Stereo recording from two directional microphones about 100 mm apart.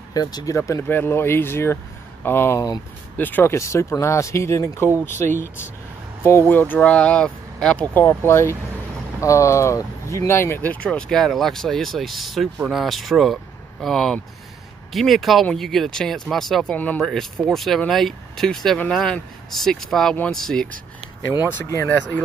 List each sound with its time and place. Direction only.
0.1 s speech: 40° left (ahead or behind)
0.6 s speech: 25° left (ahead or behind); by 16.7 s centre (ahead or behind)
16.7 s speech: 15° left (ahead or behind)
17.0 s speech: 5° left (ahead or behind)